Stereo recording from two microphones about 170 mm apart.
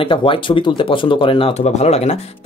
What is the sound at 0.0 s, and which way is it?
Speech, 30° left (ahead or behind).